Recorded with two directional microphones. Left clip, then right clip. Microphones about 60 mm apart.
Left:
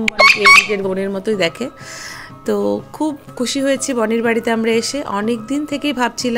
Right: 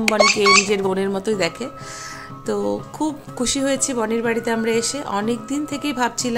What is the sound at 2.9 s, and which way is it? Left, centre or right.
Speech, left.